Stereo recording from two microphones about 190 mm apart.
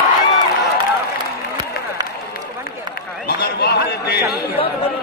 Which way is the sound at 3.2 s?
55° left (ahead or behind).